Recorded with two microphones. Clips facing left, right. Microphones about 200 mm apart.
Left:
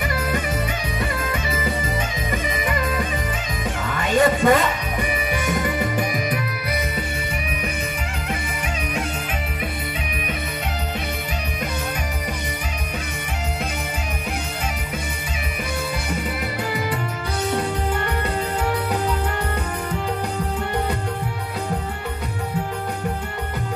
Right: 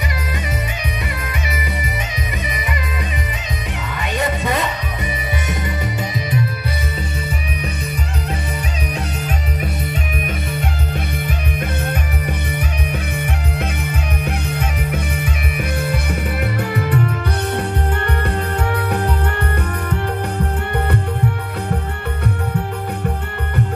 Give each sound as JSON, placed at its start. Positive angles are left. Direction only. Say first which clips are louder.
{"t": 4.1, "sound": "music", "louder": "left 5 dB", "side_deg": -20}